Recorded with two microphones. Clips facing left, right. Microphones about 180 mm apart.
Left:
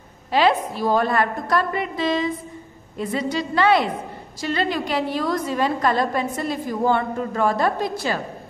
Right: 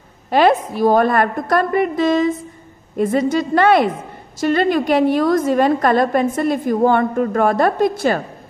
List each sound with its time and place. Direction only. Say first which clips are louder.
0.3 s a woman's voice: right 5 dB; 50° right (ahead or behind)